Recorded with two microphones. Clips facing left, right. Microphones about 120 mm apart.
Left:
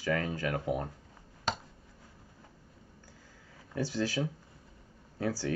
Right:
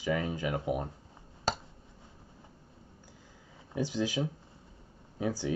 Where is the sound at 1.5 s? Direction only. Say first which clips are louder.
Right 2 dB; 35° right (ahead or behind).